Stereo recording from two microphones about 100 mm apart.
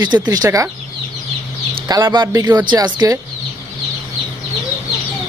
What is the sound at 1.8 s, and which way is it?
Speech, 45° right (ahead or behind).